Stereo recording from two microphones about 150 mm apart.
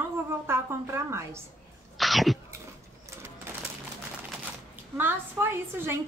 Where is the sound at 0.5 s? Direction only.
15° right (ahead or behind).